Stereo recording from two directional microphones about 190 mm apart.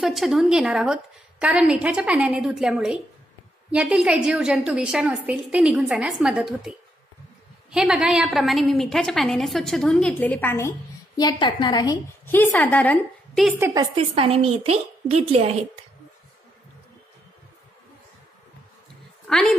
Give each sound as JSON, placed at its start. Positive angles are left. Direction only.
{"t": 0.0, "sound": "a woman's voice", "side_deg": 0}
{"t": 7.7, "sound": "a woman's voice", "side_deg": 0}
{"t": 11.1, "sound": "a woman's voice", "side_deg": 25}
{"t": 13.6, "sound": "a woman's voice", "side_deg": -15}
{"t": 13.9, "sound": "a woman's voice", "side_deg": -30}
{"t": 19.2, "sound": "a woman's voice", "side_deg": 5}